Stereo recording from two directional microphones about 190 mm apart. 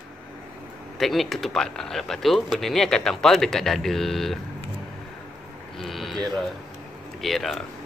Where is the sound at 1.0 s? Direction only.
Centre (ahead or behind).